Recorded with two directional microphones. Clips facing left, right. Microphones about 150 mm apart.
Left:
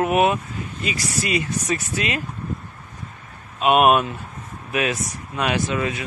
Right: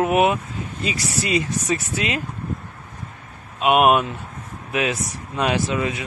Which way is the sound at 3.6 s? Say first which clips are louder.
Even; 15° right (ahead or behind).